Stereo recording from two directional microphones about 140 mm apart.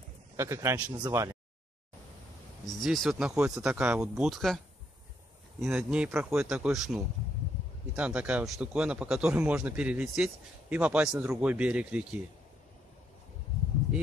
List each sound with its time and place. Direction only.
0.4 s a man's voice: 20° right (ahead or behind)
2.7 s speech: centre (ahead or behind)
5.7 s speech: 10° right (ahead or behind)